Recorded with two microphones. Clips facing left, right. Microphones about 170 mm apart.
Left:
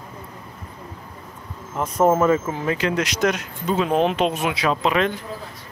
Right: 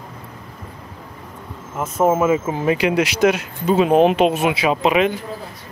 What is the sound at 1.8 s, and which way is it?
Speech, 5° right (ahead or behind).